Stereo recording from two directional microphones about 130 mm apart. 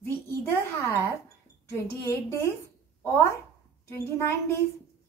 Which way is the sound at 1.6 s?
25° left (ahead or behind).